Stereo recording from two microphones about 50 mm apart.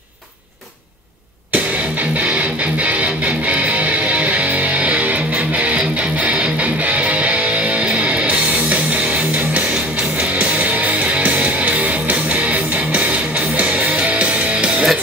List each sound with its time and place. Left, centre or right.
2.1 s music: right
10.4 s music: right